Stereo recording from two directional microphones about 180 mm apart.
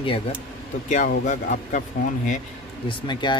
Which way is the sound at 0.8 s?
45° left (ahead or behind).